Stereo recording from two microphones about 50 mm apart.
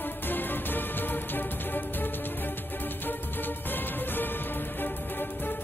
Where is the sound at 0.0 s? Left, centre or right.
Left.